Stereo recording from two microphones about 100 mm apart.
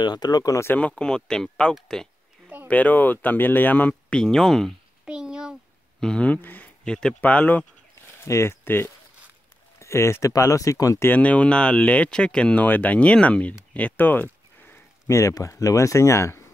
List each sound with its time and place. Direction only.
0.0 s speech: 45° left (ahead or behind)
0.7 s speech: 15° left (ahead or behind)
2.7 s speech: 15° left (ahead or behind)
5.0 s a sound: 5° right (ahead or behind)
5.9 s speech: 10° left (ahead or behind)
8.2 s speech: 25° left (ahead or behind)
11.1 s speech: 15° left (ahead or behind)
13.7 s a sound: 15° left (ahead or behind)
15.0 s speech: 30° left (ahead or behind)